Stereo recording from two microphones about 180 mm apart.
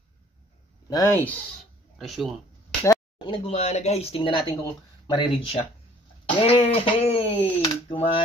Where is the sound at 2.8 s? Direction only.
20° left (ahead or behind).